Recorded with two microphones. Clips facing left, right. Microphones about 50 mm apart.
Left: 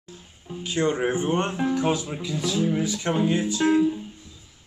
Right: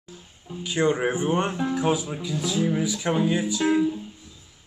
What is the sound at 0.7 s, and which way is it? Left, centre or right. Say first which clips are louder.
Speech: right 1 dB; centre.